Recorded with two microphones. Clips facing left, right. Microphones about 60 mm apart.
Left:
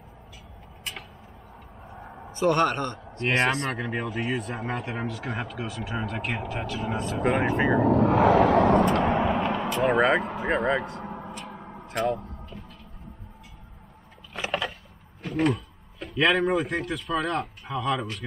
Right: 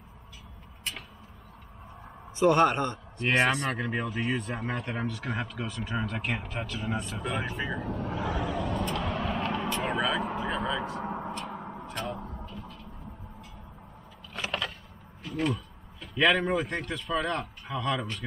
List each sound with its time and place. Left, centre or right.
2.3 s speech: centre
3.3 s speech: centre
7.2 s speech: left
7.8 s speech: left
9.0 s vehicle: left
9.9 s speech: left
10.8 s speech: centre
11.7 s a sound: centre
14.3 s a sound: centre
15.2 s speech: left
16.2 s speech: centre